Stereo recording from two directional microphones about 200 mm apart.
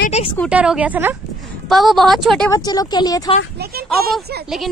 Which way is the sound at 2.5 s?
20° left (ahead or behind).